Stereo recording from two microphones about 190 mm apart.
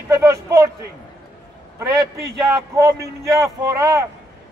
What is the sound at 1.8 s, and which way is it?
A man's voice, 15° right (ahead or behind).